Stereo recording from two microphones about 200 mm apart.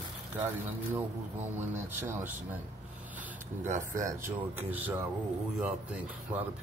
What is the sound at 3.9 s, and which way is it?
Speech, 15° right (ahead or behind).